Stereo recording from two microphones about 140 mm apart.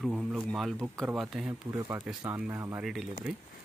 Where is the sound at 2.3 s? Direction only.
20° right (ahead or behind).